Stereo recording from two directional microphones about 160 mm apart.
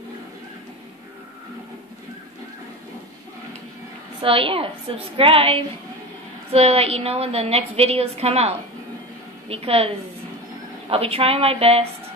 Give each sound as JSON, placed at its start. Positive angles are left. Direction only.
{"t": 4.2, "sound": "a woman's voice", "side_deg": -35}